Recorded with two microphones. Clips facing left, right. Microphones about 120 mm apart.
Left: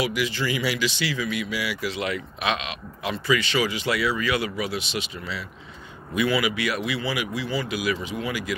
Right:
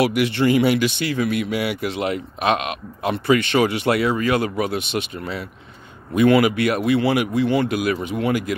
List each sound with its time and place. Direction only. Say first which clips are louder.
0.0 s speech: right 8 dB; 60° right (ahead or behind)